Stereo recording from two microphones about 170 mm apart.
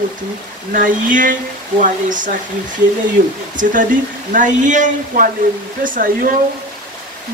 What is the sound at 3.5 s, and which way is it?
Speech, 50° right (ahead or behind).